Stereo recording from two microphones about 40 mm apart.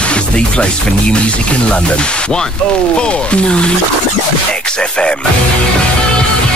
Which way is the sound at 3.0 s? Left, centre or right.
Left.